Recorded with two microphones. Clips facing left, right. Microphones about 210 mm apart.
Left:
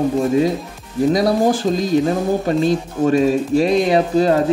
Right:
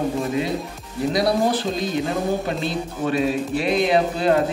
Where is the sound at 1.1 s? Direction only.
45° left (ahead or behind).